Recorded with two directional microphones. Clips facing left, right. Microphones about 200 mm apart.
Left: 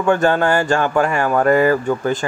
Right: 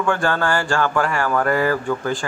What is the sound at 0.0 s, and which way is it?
Speech, 20° left (ahead or behind).